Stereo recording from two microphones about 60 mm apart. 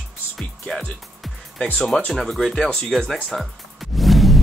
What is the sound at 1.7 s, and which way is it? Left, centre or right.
Speech, centre.